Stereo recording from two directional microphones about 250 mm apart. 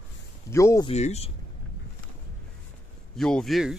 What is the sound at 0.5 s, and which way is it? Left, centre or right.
Speech, centre.